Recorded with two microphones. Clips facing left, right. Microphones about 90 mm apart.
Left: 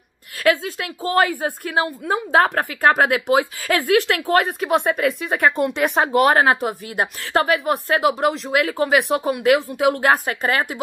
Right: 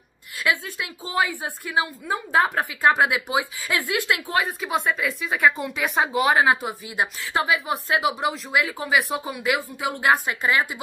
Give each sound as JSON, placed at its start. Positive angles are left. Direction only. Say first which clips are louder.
{"t": 0.4, "sound": "a woman's voice", "louder": "left 6 dB", "side_deg": 60}
{"t": 10.0, "sound": "a woman's voice", "louder": "left 2 dB", "side_deg": 55}